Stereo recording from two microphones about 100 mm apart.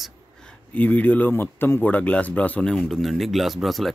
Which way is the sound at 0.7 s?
15° left (ahead or behind).